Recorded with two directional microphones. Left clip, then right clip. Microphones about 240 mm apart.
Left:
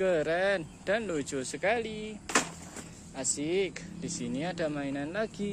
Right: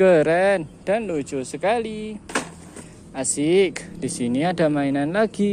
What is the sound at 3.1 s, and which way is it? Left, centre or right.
Speech, right.